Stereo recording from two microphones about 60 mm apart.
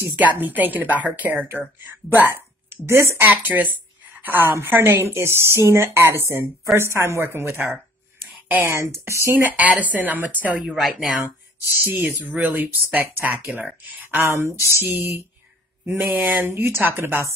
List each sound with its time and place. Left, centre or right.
0.2 s a woman's voice: right
3.2 s a woman's voice: right
8.5 s speech: right
8.9 s a woman's voice: right
9.5 s a woman's voice: right
10.8 s speech: centre
11.8 s a woman's voice: right
14.2 s a woman's voice: right
16.0 s speech: right